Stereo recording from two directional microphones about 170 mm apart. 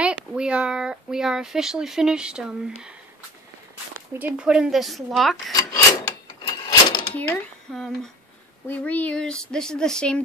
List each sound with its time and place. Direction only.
0.0 s speech: 5° right (ahead or behind)
4.2 s speech: 5° right (ahead or behind)
5.5 s speech: 20° left (ahead or behind)
6.4 s a sound: 25° left (ahead or behind)
7.2 s speech: 10° left (ahead or behind)